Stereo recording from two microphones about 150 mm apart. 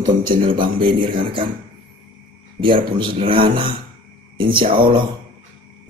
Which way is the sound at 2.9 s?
35° right (ahead or behind).